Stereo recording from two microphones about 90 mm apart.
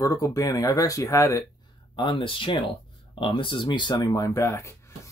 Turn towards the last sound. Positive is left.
turn(degrees=30)  # may be behind; listen again after turning